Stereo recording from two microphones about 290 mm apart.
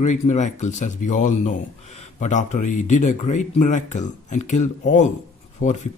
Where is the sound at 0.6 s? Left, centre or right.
Left.